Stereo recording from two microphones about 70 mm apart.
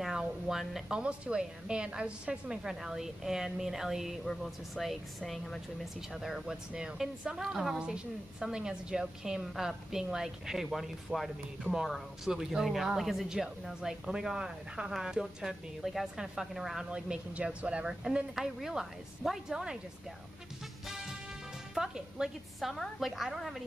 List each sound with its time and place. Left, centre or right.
0.0 s a woman's voice: centre
2.6 s a woman's voice: centre
11.7 s speech: right
12.3 s a woman's voice: centre
20.8 s music: centre
21.7 s a woman's voice: centre